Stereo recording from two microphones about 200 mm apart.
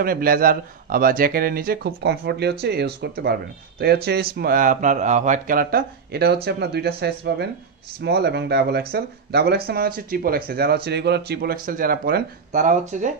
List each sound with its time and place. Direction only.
0.0 s a man's voice: 45° right (ahead or behind)